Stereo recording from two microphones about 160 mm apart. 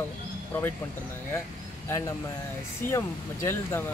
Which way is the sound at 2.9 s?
20° left (ahead or behind).